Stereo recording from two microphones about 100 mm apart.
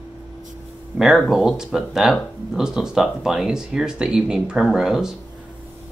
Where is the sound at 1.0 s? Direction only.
5° right (ahead or behind).